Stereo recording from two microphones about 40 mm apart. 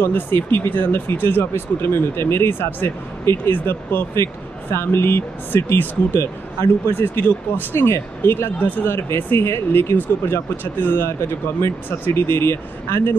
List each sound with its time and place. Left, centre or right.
0.0 s speech: left
3.4 s speech: left
4.6 s speech: left
6.9 s speech: left
8.5 s speech: left
8.8 s speech: left
10.0 s speech: left
11.2 s speech: left